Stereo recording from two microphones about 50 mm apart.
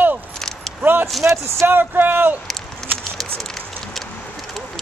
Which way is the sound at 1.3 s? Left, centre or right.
Right.